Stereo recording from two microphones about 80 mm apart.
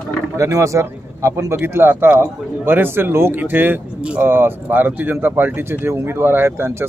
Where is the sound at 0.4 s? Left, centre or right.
Right.